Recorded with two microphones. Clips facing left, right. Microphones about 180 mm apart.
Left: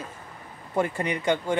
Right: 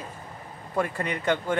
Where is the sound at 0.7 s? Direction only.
20° left (ahead or behind).